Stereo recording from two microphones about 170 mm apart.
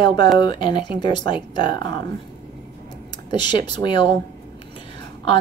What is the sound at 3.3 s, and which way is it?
Speech, 25° left (ahead or behind).